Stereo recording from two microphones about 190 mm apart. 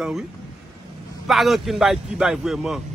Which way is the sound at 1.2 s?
Centre (ahead or behind).